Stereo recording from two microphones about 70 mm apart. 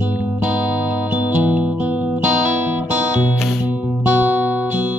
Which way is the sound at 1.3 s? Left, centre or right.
Right.